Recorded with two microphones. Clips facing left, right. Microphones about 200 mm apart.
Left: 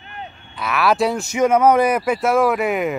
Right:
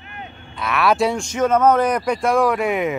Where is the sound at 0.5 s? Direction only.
Centre (ahead or behind).